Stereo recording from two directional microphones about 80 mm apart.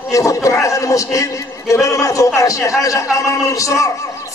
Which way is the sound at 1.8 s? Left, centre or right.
Left.